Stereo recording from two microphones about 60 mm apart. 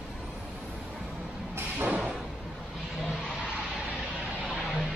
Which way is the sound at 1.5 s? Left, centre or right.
Right.